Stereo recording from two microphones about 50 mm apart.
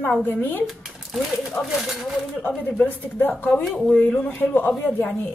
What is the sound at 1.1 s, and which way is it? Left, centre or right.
Speech, centre.